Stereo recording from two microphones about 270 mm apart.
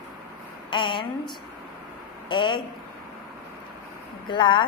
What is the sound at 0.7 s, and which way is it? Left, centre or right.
Speech, centre.